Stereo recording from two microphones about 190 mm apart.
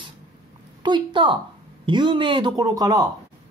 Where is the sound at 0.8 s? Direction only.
25° right (ahead or behind).